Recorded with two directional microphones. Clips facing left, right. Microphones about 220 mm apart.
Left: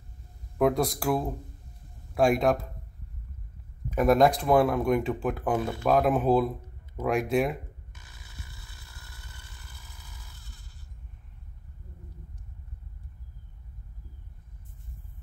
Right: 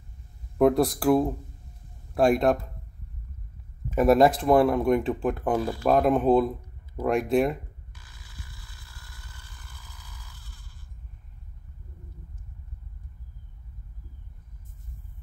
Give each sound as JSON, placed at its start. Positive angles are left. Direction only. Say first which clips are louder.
{"t": 0.6, "sound": "speech", "louder": "right 4 dB", "side_deg": 0}
{"t": 3.9, "sound": "speech", "louder": "right 2 dB", "side_deg": 0}
{"t": 7.9, "sound": "chainsaw", "louder": "even", "side_deg": 20}